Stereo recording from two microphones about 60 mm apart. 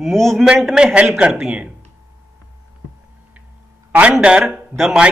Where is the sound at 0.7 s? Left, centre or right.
Centre.